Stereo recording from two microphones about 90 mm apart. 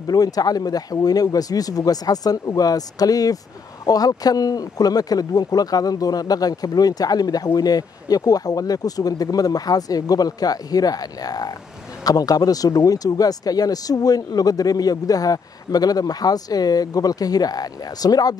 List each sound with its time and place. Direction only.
0.0 s speech: 45° left (ahead or behind)